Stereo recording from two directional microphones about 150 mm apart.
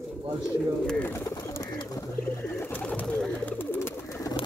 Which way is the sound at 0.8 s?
10° left (ahead or behind).